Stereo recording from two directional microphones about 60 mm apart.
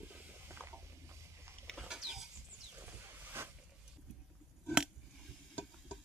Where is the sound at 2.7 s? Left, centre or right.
Right.